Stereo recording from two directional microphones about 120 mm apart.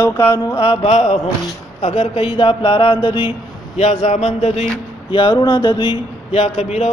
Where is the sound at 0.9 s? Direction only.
70° left (ahead or behind).